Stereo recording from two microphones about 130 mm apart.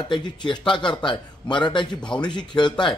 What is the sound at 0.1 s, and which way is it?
A man's voice, 35° left (ahead or behind).